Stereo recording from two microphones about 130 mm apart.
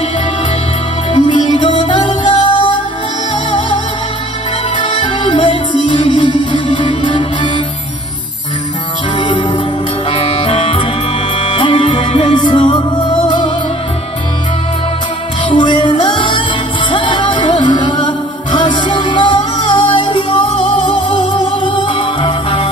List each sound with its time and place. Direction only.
1.1 s music: 40° left (ahead or behind)
4.7 s music: 40° left (ahead or behind)
9.2 s music: 35° left (ahead or behind)
15.4 s music: 35° left (ahead or behind)